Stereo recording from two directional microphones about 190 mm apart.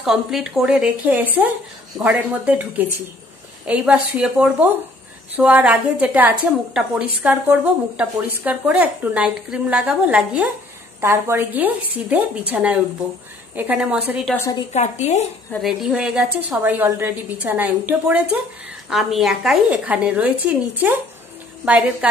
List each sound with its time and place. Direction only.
0.0 s a woman's voice: centre (ahead or behind)
14.3 s a woman's voice: 15° left (ahead or behind)
14.7 s a woman's voice: 35° left (ahead or behind)
15.6 s a woman's voice: 5° right (ahead or behind)